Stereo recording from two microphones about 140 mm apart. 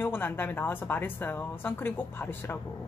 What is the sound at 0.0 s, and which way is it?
A woman's voice, 15° left (ahead or behind).